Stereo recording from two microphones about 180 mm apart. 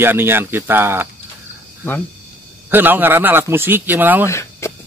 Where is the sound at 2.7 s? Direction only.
10° right (ahead or behind).